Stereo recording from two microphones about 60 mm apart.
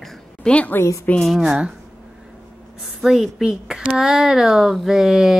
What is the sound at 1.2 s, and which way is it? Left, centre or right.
Speech, centre.